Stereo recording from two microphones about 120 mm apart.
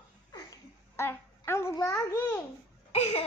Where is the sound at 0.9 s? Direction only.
20° left (ahead or behind).